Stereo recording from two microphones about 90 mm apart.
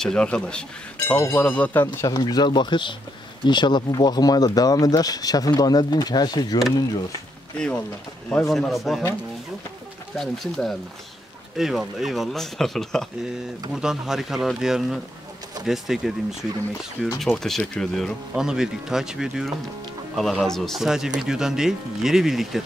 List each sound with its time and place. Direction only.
0.0 s a man's voice: 10° left (ahead or behind)
2.0 s speech: 50° left (ahead or behind)
7.5 s a man's voice: 10° left (ahead or behind)
10.1 s speech: centre (ahead or behind)
18.3 s speech: 5° right (ahead or behind)